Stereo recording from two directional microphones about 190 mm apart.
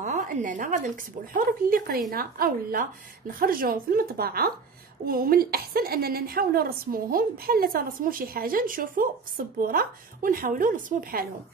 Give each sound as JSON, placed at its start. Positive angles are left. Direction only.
{"t": 0.0, "sound": "speech", "side_deg": -40}